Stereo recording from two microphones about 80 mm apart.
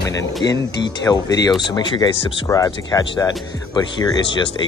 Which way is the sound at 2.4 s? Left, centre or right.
Left.